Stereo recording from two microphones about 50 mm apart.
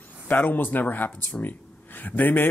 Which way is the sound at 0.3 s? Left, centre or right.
Left.